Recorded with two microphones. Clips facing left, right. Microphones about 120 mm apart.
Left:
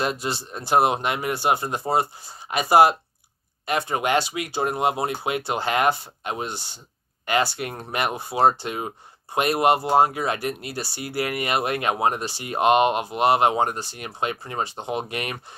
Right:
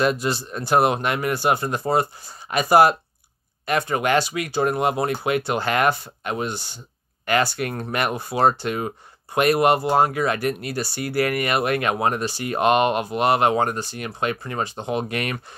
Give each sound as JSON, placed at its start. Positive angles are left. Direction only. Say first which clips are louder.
{"t": 0.0, "sound": "speech", "louder": "right 5 dB", "side_deg": 25}